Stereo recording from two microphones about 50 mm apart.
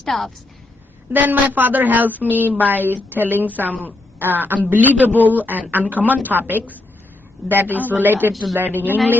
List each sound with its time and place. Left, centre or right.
0.1 s a woman's voice: centre
1.1 s a man's voice: right